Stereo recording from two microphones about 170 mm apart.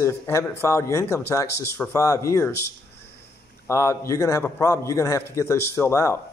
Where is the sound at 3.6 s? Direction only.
15° left (ahead or behind).